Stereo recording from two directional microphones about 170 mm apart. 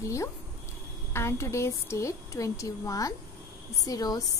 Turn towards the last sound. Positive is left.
turn(degrees=20)  # may be behind; listen again after turning